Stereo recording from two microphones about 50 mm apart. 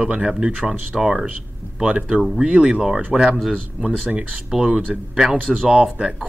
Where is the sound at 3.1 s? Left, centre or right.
Right.